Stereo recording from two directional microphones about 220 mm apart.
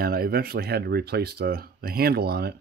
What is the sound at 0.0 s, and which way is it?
Speech, 45° right (ahead or behind).